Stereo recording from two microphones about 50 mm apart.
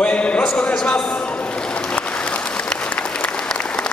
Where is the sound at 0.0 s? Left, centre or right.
Left.